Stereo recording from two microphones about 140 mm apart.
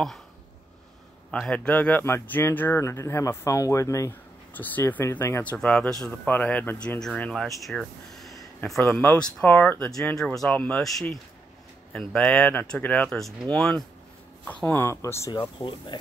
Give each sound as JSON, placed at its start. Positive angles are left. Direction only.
{"t": 1.3, "sound": "speech", "side_deg": 5}
{"t": 15.3, "sound": "speech", "side_deg": 35}